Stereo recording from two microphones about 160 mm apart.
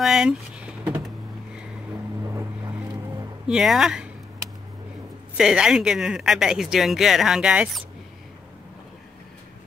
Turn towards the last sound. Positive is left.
turn(degrees=-5)  # may be behind; listen again after turning